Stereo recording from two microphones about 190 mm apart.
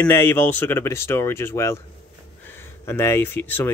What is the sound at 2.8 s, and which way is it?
Speech, 15° left (ahead or behind).